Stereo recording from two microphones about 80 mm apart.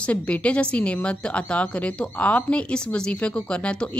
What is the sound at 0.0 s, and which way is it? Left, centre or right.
A woman's voice, centre.